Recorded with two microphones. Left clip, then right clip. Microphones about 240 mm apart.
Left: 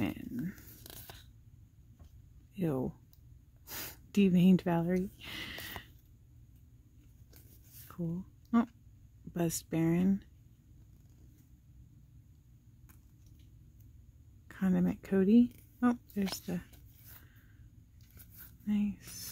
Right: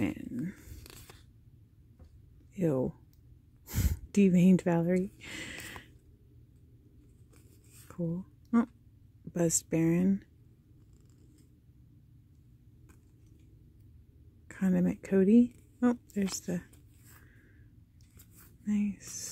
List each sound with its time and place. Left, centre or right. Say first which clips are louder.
0.0 s a sound: right 3 dB; centre
0.9 s a sound: left 2 dB; centre
2.5 s speech: right 5 dB; centre
3.6 s gasp: right 4 dB; centre
7.9 s whispering: right 4 dB; centre
9.3 s speech: right 5 dB; centre
14.5 s speech: right 2 dB; centre
18.7 s speech: right 2 dB; centre